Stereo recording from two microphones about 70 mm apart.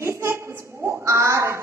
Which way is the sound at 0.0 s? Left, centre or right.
Right.